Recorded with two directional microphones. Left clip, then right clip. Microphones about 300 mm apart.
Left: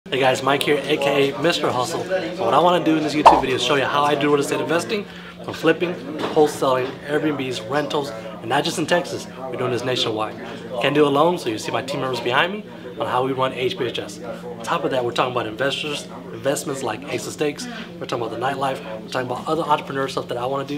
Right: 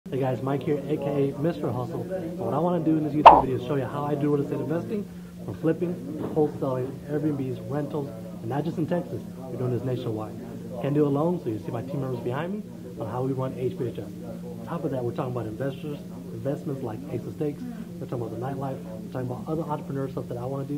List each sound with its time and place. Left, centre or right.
0.1 s speech: centre
6.3 s speech: left
6.7 s speech: centre
19.2 s speech: left
20.2 s speech: left